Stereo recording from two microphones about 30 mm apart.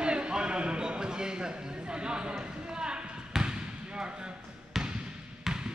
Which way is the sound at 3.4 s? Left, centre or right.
Right.